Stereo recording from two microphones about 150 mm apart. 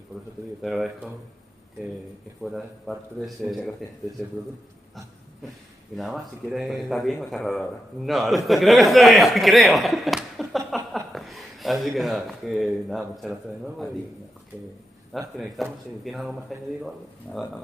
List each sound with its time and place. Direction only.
0.1 s speech: centre (ahead or behind)
2.4 s speech: centre (ahead or behind)
5.9 s speech: centre (ahead or behind)
15.1 s speech: centre (ahead or behind)